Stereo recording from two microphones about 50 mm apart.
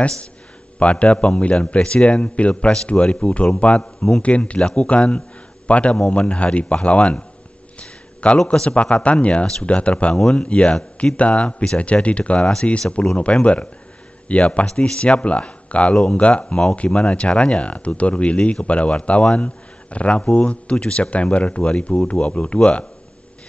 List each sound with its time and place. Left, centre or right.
0.7 s speech: left
3.8 s a man's voice: centre
4.2 s speech: left
7.8 s a sound: left
8.5 s speech: left